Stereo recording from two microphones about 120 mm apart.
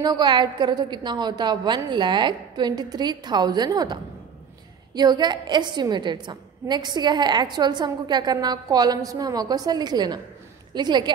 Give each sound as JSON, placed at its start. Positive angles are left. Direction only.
{"t": 0.0, "sound": "a woman's voice", "side_deg": -35}